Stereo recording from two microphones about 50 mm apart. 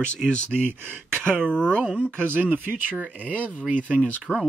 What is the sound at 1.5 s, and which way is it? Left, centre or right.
Speech, left.